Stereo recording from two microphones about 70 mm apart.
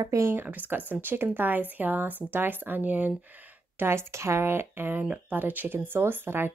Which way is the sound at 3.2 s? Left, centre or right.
Right.